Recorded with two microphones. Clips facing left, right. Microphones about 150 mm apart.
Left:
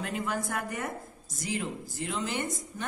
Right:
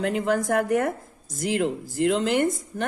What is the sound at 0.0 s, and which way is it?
A woman's voice, 65° right (ahead or behind).